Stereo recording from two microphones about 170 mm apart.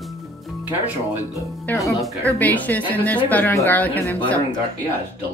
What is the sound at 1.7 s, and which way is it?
Speech, 20° left (ahead or behind).